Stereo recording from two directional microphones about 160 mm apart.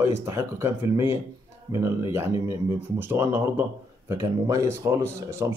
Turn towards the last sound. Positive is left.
turn(degrees=-15)  # may be behind; listen again after turning